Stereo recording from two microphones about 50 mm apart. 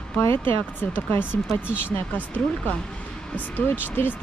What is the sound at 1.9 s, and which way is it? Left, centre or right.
Speech, left.